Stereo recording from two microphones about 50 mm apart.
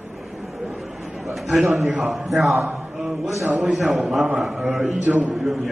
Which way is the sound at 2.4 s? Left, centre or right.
Centre.